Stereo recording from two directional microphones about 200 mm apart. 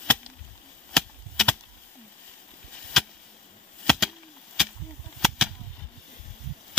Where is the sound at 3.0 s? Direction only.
Centre (ahead or behind).